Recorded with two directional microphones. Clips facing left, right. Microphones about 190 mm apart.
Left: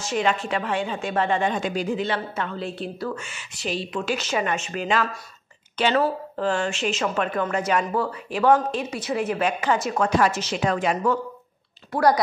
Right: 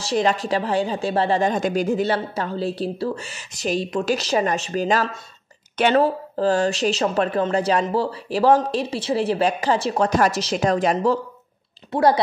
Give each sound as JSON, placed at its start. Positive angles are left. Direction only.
{"t": 0.0, "sound": "speech", "side_deg": -35}
{"t": 11.9, "sound": "speech", "side_deg": -25}